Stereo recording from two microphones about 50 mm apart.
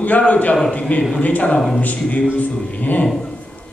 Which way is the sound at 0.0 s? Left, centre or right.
Left.